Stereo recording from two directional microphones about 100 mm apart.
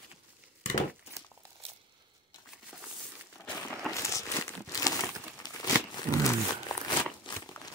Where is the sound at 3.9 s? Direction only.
30° left (ahead or behind).